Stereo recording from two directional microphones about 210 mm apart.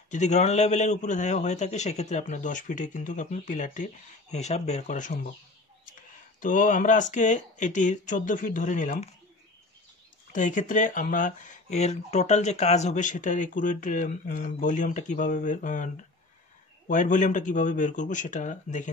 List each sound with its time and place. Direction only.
0.1 s speech: 35° left (ahead or behind)
6.4 s speech: 40° left (ahead or behind)
10.3 s speech: 35° left (ahead or behind)